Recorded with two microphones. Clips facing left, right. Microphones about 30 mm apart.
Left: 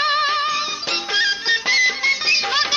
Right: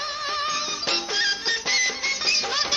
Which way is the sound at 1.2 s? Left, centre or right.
Centre.